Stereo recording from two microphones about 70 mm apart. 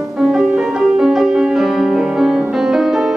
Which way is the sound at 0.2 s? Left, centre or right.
Centre.